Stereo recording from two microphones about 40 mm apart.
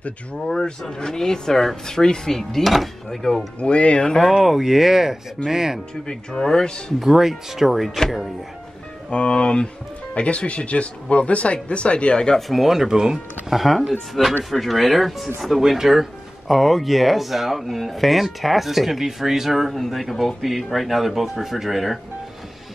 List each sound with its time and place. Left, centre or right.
0.7 s speech: centre
3.5 s speech: left
4.3 s speech: centre
6.0 s speech: centre
7.0 s speech: centre
9.1 s speech: left
12.4 s speech: centre